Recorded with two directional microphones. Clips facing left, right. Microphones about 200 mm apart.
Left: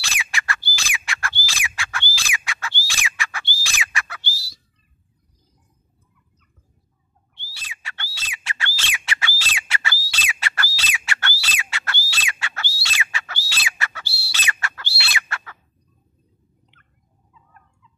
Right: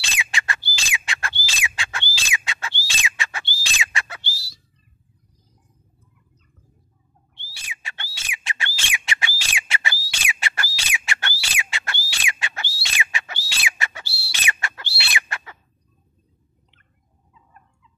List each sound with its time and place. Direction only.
0.1 s bird: 20° right (ahead or behind)
7.5 s bird: 15° right (ahead or behind)
13.5 s fowl: 15° right (ahead or behind)
14.0 s fowl: centre (ahead or behind)
14.3 s bird: 15° right (ahead or behind)